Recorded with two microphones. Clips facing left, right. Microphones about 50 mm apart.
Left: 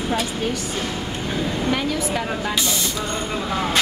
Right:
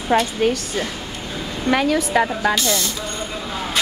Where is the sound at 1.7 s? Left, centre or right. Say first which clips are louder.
Right 10 dB; right.